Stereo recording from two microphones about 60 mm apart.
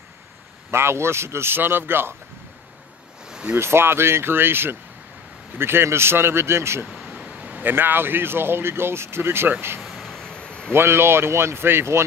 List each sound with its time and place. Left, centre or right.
0.7 s speech: right
3.3 s a sound: centre
3.5 s speech: right
7.1 s speech: right
9.8 s a sound: centre
10.7 s speech: right